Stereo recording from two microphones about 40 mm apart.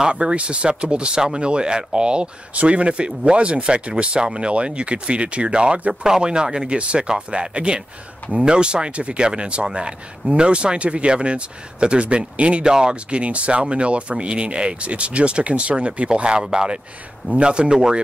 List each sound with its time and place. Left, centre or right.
0.1 s speech: right
12.6 s speech: centre
13.2 s speech: right